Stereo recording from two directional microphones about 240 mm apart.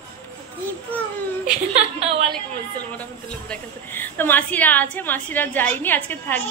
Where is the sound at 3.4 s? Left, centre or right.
Centre.